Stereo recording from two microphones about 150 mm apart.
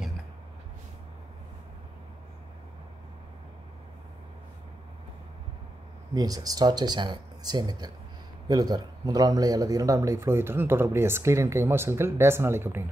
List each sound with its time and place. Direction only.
6.1 s a man's voice: 25° right (ahead or behind)